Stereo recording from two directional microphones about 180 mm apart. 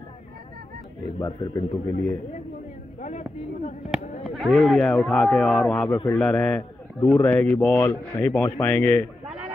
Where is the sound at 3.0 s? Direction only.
40° left (ahead or behind).